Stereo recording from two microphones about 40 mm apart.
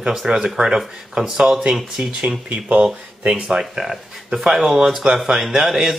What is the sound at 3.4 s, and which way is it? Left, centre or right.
Speech, centre.